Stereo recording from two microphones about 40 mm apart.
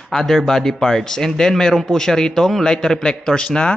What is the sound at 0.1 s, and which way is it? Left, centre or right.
Speech, centre.